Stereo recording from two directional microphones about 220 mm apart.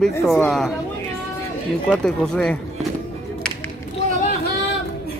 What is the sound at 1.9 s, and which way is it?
Speech, 5° left (ahead or behind).